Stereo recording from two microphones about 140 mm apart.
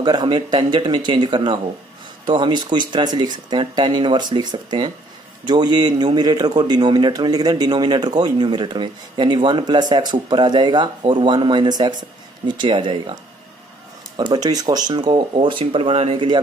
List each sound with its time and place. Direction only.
0.0 s a man's voice: 30° right (ahead or behind)